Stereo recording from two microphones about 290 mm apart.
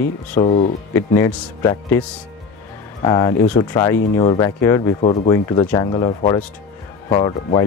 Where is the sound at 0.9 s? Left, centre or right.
Centre.